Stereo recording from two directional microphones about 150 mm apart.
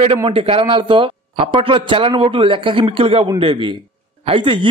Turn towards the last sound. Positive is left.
turn(degrees=-35)  # may be behind; listen again after turning